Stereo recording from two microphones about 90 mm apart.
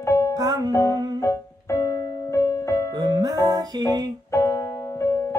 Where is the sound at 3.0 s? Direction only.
50° right (ahead or behind).